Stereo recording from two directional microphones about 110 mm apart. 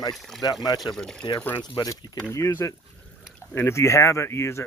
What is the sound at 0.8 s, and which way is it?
Speech, 5° left (ahead or behind).